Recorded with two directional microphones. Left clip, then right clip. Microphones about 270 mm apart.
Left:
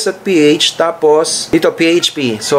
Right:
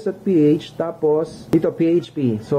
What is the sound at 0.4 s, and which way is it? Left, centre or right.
Speech, centre.